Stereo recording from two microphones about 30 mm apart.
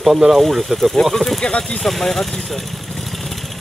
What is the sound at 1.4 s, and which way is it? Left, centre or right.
Speech, left.